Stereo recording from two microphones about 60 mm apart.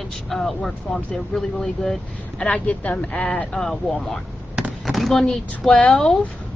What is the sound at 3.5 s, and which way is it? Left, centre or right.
Speech, centre.